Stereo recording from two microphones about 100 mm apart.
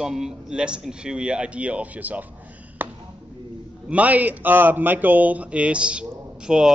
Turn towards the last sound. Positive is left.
turn(degrees=-5)  # may be behind; listen again after turning